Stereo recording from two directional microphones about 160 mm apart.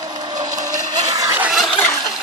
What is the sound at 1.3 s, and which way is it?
Fowl, 5° right (ahead or behind).